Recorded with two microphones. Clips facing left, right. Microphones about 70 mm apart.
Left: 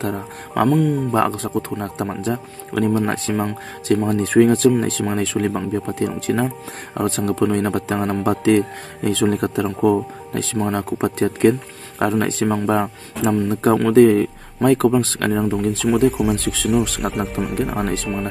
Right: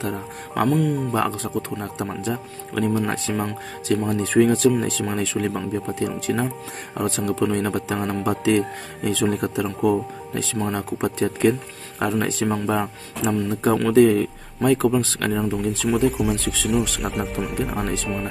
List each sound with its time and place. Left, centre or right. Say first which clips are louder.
0.0 s speech: left 3 dB; left
1.1 s speech: left 4 dB; left
15.9 s speech: left 4 dB; centre
16.8 s speech: left 4 dB; left
17.1 s speech: left 3 dB; centre